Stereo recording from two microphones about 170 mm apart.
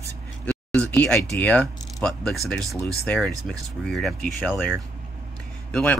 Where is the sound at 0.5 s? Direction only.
5° left (ahead or behind).